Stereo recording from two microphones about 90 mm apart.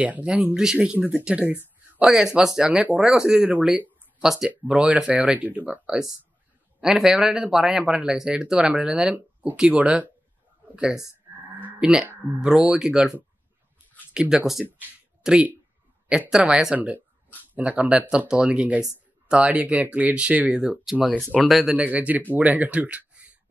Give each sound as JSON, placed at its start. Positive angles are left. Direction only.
{"t": 0.0, "sound": "speech", "side_deg": -15}
{"t": 4.2, "sound": "speech", "side_deg": -5}
{"t": 21.7, "sound": "speech", "side_deg": -15}